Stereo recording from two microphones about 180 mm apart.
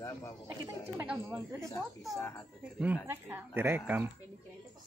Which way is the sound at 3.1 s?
10° right (ahead or behind).